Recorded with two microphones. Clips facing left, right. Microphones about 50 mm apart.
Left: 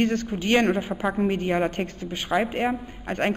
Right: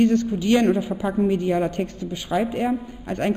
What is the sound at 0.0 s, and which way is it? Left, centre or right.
A woman's voice, left.